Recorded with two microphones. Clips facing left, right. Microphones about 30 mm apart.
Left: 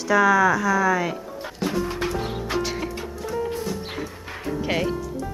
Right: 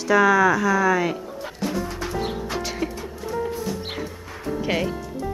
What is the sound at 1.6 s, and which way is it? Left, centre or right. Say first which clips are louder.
Music: left 2 dB; centre.